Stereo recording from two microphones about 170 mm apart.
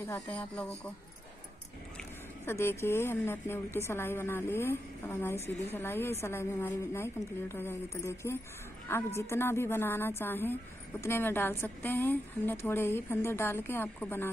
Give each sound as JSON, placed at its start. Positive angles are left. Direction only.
{"t": 0.0, "sound": "a woman's voice", "side_deg": 10}
{"t": 2.0, "sound": "a woman's voice", "side_deg": 15}